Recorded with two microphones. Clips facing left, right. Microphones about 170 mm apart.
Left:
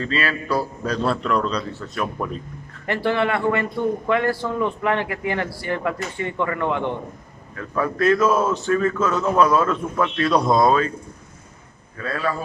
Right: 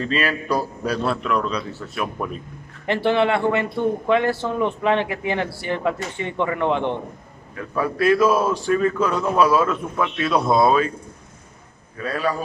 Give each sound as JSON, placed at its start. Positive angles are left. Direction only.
{"t": 0.0, "sound": "a man's voice", "side_deg": -15}
{"t": 2.9, "sound": "a man's voice", "side_deg": -25}
{"t": 7.5, "sound": "a man's voice", "side_deg": -10}
{"t": 12.0, "sound": "a man's voice", "side_deg": -15}